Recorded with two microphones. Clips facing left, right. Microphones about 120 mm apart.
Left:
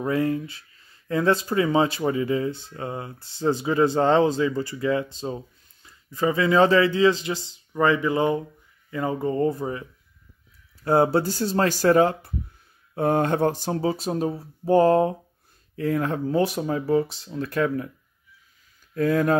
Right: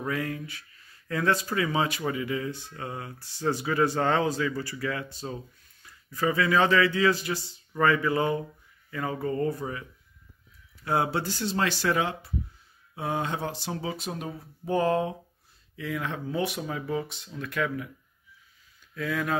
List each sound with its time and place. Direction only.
0.0 s speech: 30° left (ahead or behind)
18.9 s speech: 45° left (ahead or behind)